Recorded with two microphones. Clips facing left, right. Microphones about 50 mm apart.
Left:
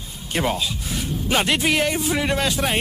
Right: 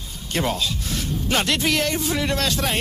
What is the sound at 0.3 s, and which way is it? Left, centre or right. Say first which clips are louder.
Speech: left 1 dB; centre.